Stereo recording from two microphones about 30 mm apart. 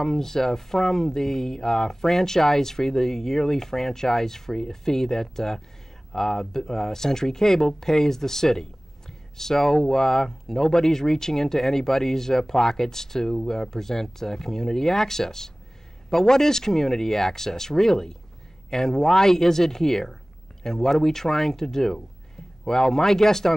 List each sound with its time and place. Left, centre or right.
0.0 s speech: centre